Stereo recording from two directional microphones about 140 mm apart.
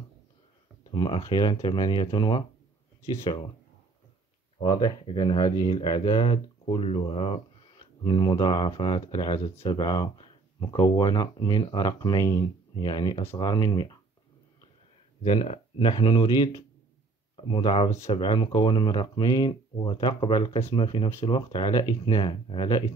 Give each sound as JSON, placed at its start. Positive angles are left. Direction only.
{"t": 0.9, "sound": "speech", "side_deg": 35}
{"t": 4.6, "sound": "speech", "side_deg": 30}
{"t": 8.0, "sound": "speech", "side_deg": 30}
{"t": 15.2, "sound": "speech", "side_deg": 40}